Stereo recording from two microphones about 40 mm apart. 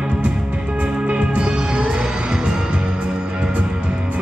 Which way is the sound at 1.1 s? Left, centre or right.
Right.